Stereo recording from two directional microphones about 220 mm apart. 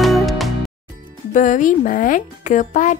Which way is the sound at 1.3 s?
35° left (ahead or behind).